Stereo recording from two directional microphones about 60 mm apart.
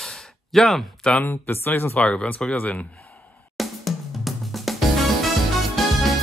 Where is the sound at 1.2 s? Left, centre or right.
Left.